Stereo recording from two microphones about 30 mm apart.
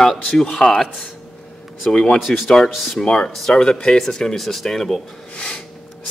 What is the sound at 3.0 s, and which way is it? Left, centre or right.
Speech, left.